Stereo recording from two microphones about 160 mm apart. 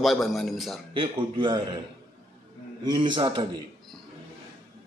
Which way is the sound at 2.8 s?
30° right (ahead or behind).